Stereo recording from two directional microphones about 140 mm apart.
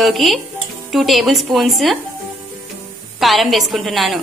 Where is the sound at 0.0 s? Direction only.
Centre (ahead or behind).